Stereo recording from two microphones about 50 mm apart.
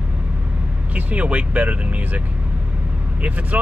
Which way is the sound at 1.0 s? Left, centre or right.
Right.